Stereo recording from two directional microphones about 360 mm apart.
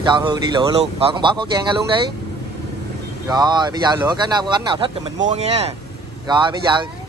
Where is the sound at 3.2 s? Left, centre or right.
Centre.